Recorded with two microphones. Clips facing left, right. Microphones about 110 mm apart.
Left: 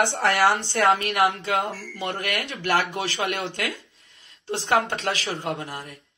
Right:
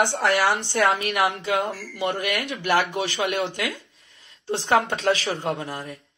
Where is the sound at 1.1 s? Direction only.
20° right (ahead or behind).